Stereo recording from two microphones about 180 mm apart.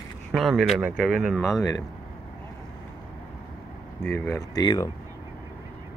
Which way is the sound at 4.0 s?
10° left (ahead or behind).